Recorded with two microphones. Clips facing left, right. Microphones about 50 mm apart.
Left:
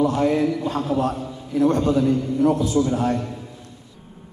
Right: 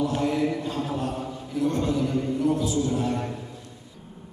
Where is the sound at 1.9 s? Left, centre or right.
Left.